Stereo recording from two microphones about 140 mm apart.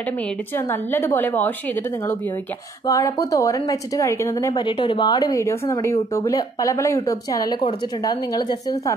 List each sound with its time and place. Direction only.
0.6 s a woman's voice: 15° left (ahead or behind)
2.9 s speech: 25° left (ahead or behind)
4.6 s speech: 35° left (ahead or behind)